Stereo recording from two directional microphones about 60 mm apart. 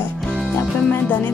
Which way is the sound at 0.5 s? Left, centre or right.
Left.